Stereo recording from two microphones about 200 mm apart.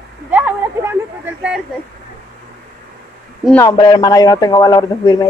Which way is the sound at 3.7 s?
20° left (ahead or behind).